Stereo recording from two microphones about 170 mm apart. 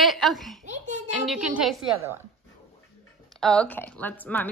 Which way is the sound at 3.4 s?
5° left (ahead or behind).